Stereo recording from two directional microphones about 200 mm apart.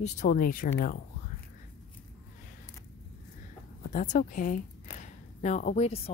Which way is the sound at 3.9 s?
40° left (ahead or behind).